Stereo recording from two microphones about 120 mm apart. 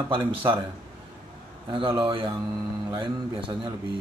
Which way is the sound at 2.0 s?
45° right (ahead or behind).